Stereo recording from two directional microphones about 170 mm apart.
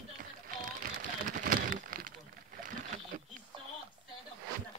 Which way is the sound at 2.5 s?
50° right (ahead or behind).